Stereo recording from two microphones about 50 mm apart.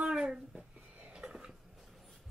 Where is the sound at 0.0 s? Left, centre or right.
Centre.